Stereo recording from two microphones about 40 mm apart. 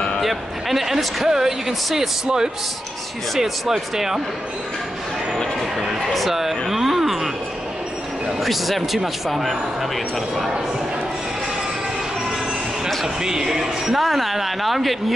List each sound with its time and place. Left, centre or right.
0.2 s speech: centre
2.2 s a man's voice: centre
5.8 s speech: centre
6.7 s a sound: centre
8.3 s speech: centre
13.0 s speech: centre
14.0 s speech: centre